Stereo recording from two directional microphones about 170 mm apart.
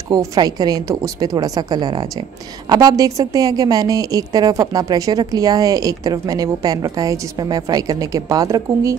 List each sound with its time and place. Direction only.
0.1 s a woman's voice: 20° right (ahead or behind)